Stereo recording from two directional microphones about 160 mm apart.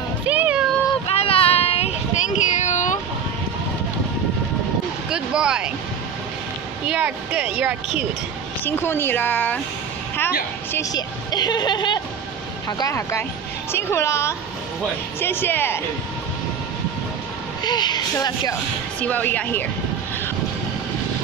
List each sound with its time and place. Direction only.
0.3 s cat: 10° right (ahead or behind)
1.0 s child singing: 40° left (ahead or behind)
5.1 s speech: 5° right (ahead or behind)
6.9 s speech: 10° right (ahead or behind)
8.6 s a woman's voice: 15° left (ahead or behind)
10.7 s a woman's voice: 20° left (ahead or behind)
17.6 s a woman's voice: 25° left (ahead or behind)
18.9 s a woman's voice: 10° left (ahead or behind)